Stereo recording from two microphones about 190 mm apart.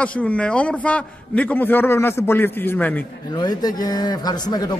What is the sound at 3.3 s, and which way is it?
A man's voice, 20° left (ahead or behind).